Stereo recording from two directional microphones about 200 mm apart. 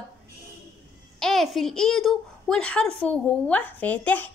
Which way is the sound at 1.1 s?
Centre (ahead or behind).